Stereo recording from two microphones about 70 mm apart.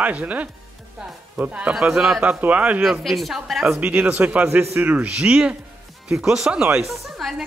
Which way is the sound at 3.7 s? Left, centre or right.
Right.